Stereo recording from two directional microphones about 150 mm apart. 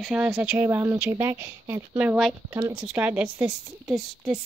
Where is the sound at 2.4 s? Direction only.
20° right (ahead or behind).